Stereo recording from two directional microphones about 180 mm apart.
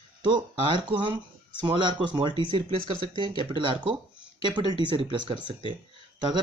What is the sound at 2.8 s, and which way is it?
Speech, 25° left (ahead or behind).